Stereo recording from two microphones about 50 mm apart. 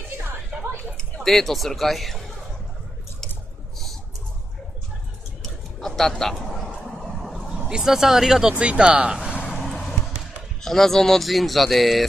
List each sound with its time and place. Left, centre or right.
0.9 s speech: centre
5.4 s a sound: centre
6.5 s vehicle: centre
7.6 s speech: centre
8.5 s speech: right
10.6 s speech: centre